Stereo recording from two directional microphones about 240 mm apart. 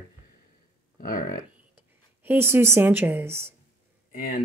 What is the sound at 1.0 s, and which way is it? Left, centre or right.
Speech, left.